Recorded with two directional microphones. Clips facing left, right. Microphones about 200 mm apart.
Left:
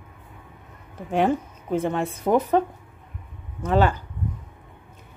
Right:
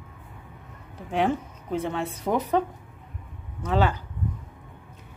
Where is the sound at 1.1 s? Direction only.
45° left (ahead or behind).